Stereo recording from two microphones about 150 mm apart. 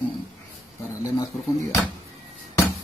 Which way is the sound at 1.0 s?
20° left (ahead or behind).